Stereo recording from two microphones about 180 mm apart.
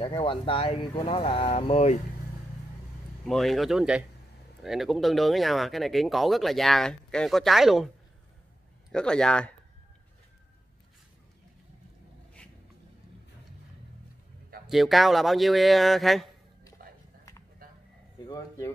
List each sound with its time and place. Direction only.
0.0 s speech: 30° left (ahead or behind)
3.3 s speech: centre (ahead or behind)
8.9 s speech: 5° left (ahead or behind)
14.7 s speech: centre (ahead or behind)